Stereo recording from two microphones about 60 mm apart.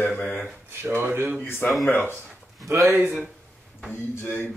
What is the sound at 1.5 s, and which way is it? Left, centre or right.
Speech, left.